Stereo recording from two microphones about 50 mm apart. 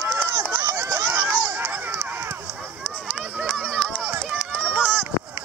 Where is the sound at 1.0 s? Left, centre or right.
Right.